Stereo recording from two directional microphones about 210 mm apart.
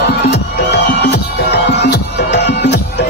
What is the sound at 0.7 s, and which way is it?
Music, 50° left (ahead or behind).